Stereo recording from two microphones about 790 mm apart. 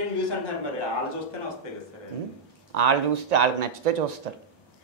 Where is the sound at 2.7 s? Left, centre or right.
Right.